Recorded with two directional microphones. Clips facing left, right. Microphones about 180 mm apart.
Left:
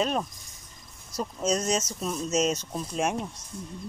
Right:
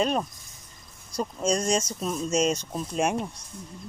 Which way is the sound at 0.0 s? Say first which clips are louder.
Right 2 dB; centre (ahead or behind).